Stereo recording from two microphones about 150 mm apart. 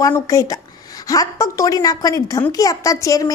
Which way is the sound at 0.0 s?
25° left (ahead or behind).